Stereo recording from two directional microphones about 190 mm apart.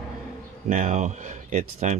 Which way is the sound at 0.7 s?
40° right (ahead or behind).